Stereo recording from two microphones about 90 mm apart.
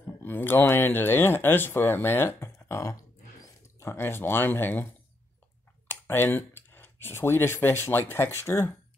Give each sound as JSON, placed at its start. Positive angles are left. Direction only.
{"t": 0.0, "sound": "speech", "side_deg": 25}
{"t": 5.9, "sound": "speech", "side_deg": 25}